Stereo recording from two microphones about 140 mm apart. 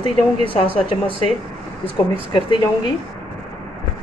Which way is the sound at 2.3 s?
35° left (ahead or behind).